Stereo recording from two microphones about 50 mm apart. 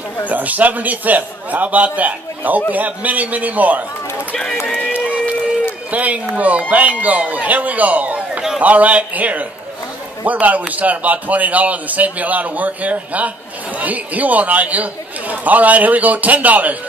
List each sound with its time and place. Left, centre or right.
0.3 s a man's voice: right
5.9 s a man's voice: right